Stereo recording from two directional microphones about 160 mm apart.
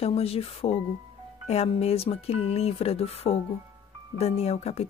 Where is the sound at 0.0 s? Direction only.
40° left (ahead or behind).